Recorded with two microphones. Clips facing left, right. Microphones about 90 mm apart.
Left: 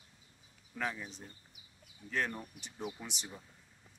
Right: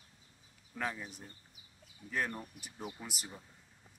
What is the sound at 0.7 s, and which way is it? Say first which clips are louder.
A man's voice: even; 15° right (ahead or behind).